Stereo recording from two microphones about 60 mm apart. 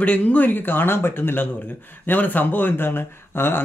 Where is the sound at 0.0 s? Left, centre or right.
Left.